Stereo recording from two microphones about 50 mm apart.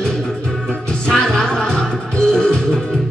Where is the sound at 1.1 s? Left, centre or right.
Centre.